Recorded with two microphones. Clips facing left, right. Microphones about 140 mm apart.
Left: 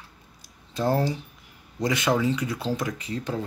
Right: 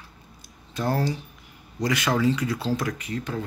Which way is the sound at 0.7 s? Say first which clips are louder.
Left 2 dB; 25° left (ahead or behind).